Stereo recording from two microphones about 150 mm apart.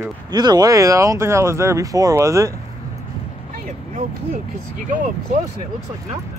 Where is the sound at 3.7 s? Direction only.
50° right (ahead or behind).